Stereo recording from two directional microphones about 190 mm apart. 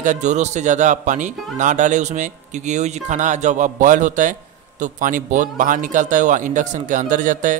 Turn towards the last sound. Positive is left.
turn(degrees=-45)  # may be behind; listen again after turning